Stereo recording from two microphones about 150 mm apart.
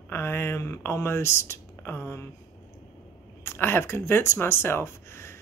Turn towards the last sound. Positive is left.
turn(degrees=15)  # may be behind; listen again after turning